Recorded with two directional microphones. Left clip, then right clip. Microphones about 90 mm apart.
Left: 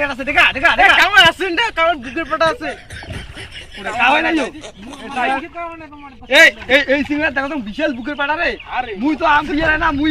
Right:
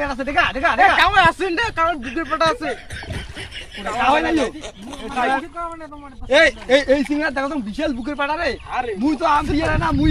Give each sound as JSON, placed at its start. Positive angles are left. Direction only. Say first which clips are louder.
{"t": 0.0, "sound": "speech", "louder": "left 5 dB", "side_deg": 0}
{"t": 4.0, "sound": "speech", "louder": "left 3 dB", "side_deg": -70}
{"t": 5.1, "sound": "speech", "louder": "left 1 dB", "side_deg": 0}
{"t": 6.2, "sound": "a man's voice", "louder": "left 5 dB", "side_deg": -90}
{"t": 7.8, "sound": "speech", "louder": "left 4 dB", "side_deg": -5}
{"t": 9.0, "sound": "a man's voice", "louder": "left 3 dB", "side_deg": -65}
{"t": 9.3, "sound": "speech", "louder": "left 7 dB", "side_deg": -15}